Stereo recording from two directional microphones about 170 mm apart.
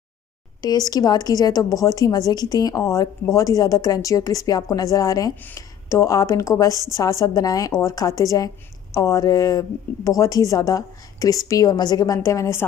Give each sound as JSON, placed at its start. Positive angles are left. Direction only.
{"t": 0.6, "sound": "a woman's voice", "side_deg": 20}